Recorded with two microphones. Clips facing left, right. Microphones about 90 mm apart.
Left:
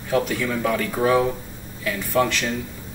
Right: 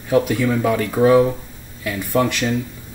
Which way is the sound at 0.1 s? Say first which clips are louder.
Right 5 dB; 15° right (ahead or behind).